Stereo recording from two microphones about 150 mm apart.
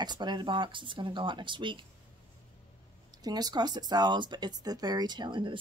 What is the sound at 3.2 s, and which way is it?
Speech, 25° right (ahead or behind).